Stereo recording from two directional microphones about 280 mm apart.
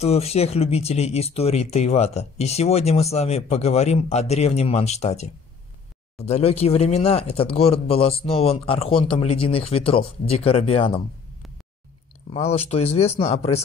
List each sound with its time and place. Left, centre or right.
0.0 s speech: left
12.3 s speech: left